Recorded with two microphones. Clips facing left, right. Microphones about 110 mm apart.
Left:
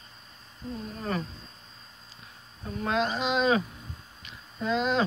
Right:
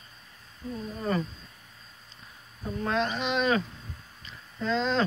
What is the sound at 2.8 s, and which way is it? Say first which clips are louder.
Speech: left 1 dB; 15° left (ahead or behind).